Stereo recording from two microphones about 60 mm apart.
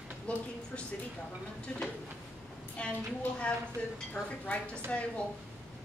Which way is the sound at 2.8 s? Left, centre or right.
Centre.